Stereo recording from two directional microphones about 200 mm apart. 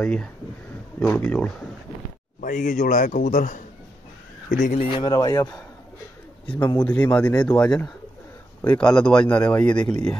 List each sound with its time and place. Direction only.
0.0 s speech: 5° left (ahead or behind)
2.4 s a man's voice: 40° left (ahead or behind)
4.8 s speech: 25° left (ahead or behind)
6.4 s speech: 5° left (ahead or behind)